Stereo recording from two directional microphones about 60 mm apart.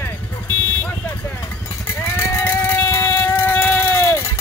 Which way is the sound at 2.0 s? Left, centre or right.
Left.